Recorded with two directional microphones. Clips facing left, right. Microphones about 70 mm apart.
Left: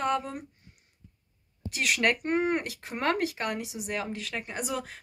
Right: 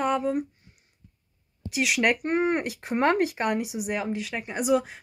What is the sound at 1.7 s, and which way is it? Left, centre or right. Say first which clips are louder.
Speech: right 3 dB; centre.